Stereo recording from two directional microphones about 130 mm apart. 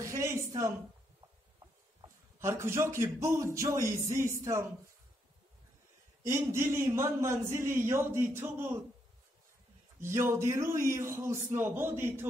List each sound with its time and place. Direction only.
0.0 s a sound: 20° right (ahead or behind)
0.5 s a woman's voice: 20° right (ahead or behind)
2.4 s a man's voice: 20° right (ahead or behind)
6.2 s a man's voice: 20° right (ahead or behind)
9.9 s a man's voice: 20° right (ahead or behind)